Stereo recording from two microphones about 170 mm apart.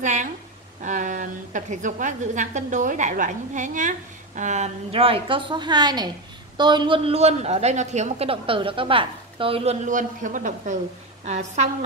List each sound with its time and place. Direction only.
0.0 s a woman's voice: 45° right (ahead or behind)